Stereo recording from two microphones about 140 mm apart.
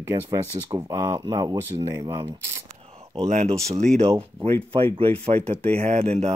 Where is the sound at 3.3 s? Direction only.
60° right (ahead or behind).